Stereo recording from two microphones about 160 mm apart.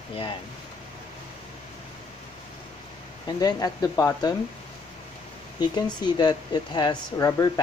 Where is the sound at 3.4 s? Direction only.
25° left (ahead or behind).